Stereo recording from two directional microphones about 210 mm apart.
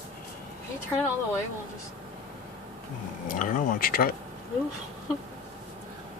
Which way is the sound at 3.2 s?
40° left (ahead or behind).